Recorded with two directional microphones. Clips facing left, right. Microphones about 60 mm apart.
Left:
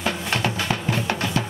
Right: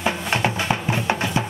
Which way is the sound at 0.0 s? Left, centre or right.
Right.